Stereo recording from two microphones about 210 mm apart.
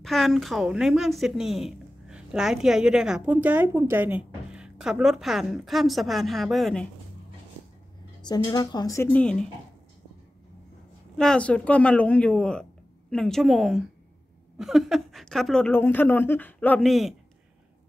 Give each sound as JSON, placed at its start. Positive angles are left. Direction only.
{"t": 0.0, "sound": "speech", "side_deg": 0}
{"t": 8.2, "sound": "a woman's voice", "side_deg": 20}
{"t": 11.1, "sound": "speech", "side_deg": 5}